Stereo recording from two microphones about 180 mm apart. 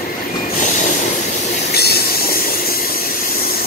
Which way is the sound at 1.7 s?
60° left (ahead or behind).